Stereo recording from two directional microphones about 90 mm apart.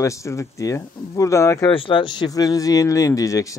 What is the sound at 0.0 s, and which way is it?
Speech, 35° left (ahead or behind).